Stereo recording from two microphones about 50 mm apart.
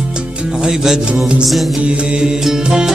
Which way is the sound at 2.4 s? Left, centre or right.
Centre.